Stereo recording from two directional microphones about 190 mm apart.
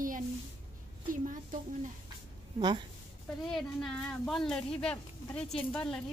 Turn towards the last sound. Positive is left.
turn(degrees=5)  # may be behind; listen again after turning